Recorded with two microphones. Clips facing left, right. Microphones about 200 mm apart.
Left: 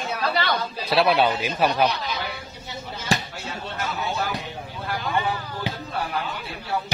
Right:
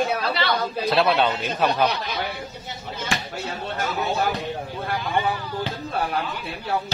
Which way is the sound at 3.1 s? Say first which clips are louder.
Left 4 dB; 35° left (ahead or behind).